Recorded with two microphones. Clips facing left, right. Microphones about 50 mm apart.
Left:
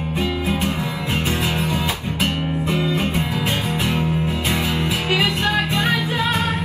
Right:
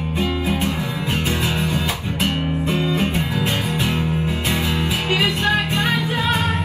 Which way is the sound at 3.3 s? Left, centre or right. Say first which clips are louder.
Even; left.